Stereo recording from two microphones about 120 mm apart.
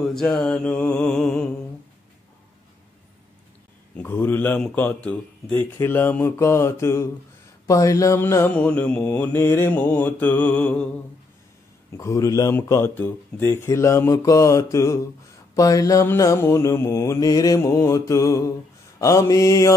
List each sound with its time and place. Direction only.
0.1 s mantra: 5° left (ahead or behind)
3.9 s mantra: 15° left (ahead or behind)
5.6 s speech: 15° left (ahead or behind)
7.6 s mantra: 25° left (ahead or behind)
12.0 s speech: 25° left (ahead or behind)